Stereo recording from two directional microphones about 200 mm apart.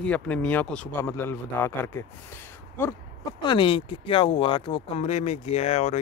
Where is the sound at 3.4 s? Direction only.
25° left (ahead or behind).